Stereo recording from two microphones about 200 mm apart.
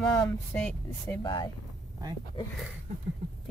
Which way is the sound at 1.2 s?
25° left (ahead or behind).